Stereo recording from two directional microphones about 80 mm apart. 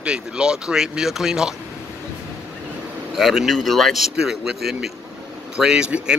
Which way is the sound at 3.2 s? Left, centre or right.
Centre.